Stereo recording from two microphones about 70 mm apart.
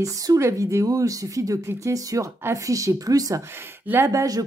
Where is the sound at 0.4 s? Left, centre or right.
Right.